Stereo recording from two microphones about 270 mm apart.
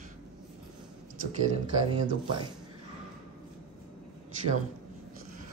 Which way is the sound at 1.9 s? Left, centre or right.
Centre.